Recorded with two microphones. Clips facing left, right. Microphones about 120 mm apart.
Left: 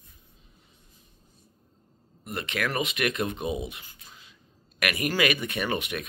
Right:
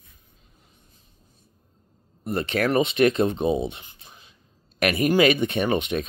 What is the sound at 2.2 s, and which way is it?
Speech, 30° right (ahead or behind).